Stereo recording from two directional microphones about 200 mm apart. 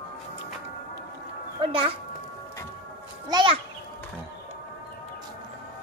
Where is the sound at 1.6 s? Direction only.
25° right (ahead or behind).